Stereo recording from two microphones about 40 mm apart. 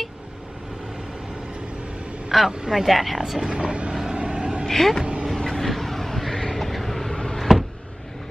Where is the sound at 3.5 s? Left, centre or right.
Right.